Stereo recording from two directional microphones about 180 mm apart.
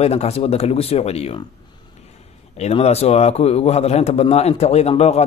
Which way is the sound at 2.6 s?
35° left (ahead or behind).